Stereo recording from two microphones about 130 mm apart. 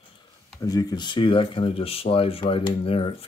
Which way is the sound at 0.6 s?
30° left (ahead or behind).